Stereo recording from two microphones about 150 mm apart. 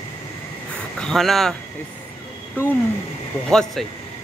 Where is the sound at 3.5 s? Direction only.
5° left (ahead or behind).